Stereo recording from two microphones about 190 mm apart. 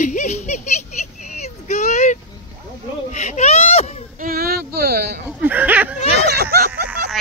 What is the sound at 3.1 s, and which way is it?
Baby cry, 35° left (ahead or behind).